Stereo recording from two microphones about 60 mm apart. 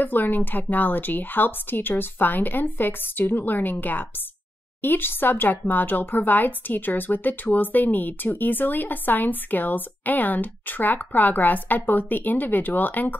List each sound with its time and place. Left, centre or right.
0.0 s speech: left